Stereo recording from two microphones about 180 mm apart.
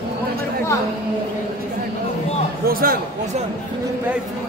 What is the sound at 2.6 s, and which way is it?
Speech, 55° right (ahead or behind).